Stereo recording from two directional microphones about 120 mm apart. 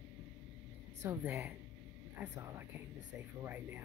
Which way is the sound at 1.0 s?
20° right (ahead or behind).